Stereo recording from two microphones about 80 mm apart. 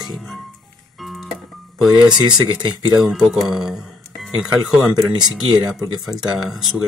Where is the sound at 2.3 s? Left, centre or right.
Right.